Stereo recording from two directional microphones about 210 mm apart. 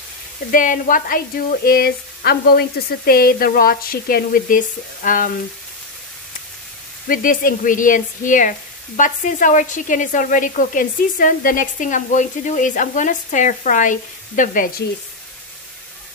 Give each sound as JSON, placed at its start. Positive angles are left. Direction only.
{"t": 0.5, "sound": "sizzle", "side_deg": 40}
{"t": 7.1, "sound": "speech", "side_deg": 40}